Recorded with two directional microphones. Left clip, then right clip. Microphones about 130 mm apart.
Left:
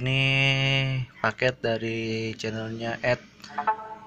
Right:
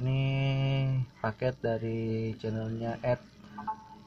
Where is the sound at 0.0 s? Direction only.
5° left (ahead or behind).